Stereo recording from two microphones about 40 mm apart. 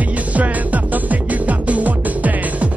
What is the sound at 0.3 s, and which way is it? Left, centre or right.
Music, right.